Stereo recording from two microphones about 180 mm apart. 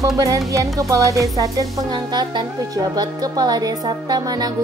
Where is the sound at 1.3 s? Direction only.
20° right (ahead or behind).